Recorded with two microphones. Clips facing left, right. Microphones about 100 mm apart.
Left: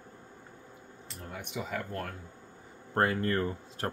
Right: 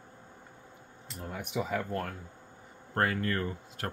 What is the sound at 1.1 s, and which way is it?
Speech, 5° right (ahead or behind).